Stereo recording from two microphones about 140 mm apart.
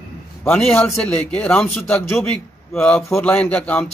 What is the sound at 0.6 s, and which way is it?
A man's voice, 5° left (ahead or behind).